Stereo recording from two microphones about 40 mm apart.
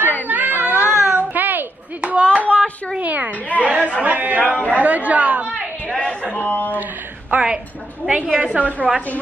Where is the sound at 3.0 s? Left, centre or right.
Right.